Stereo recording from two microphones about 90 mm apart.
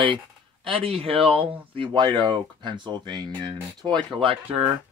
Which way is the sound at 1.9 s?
55° right (ahead or behind).